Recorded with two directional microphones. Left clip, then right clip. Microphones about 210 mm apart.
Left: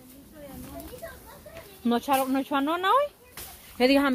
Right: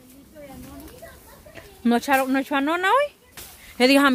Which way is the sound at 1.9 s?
30° right (ahead or behind).